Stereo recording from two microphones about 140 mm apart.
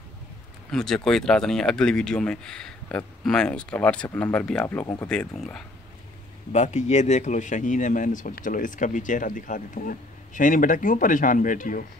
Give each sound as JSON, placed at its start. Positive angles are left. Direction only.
{"t": 0.7, "sound": "speech", "side_deg": 5}
{"t": 6.5, "sound": "speech", "side_deg": 55}